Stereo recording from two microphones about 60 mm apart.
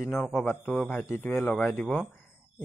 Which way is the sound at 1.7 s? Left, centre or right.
Left.